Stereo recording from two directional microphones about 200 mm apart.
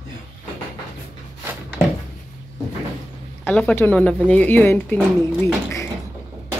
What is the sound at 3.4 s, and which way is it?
Speech, 10° left (ahead or behind).